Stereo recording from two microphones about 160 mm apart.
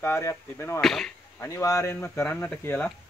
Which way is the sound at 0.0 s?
20° left (ahead or behind).